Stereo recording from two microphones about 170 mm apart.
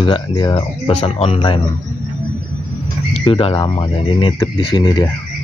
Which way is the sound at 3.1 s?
30° left (ahead or behind).